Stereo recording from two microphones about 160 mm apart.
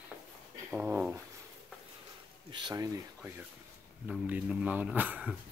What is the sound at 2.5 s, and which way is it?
Speech, 25° right (ahead or behind).